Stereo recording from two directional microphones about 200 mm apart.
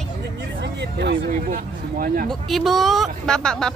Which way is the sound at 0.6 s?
55° right (ahead or behind).